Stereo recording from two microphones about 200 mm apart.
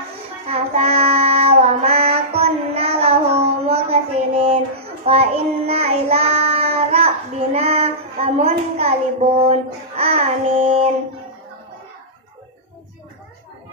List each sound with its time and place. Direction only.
0.5 s child singing: 30° right (ahead or behind)